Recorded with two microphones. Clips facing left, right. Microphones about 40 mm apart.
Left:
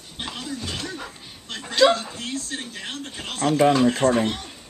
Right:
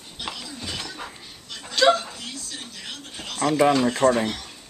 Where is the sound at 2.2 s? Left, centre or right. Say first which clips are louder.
Left 6 dB; left.